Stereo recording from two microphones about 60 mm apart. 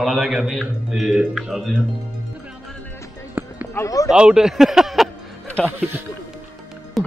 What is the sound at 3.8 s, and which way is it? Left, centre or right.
Speech, left.